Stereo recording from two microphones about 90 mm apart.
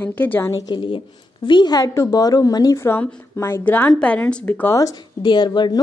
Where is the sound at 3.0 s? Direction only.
25° left (ahead or behind).